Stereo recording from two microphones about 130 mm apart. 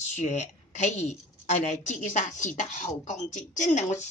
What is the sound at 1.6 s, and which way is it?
A woman's voice, 70° left (ahead or behind).